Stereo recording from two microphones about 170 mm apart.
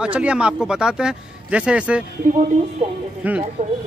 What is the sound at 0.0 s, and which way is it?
A man's voice, 5° right (ahead or behind).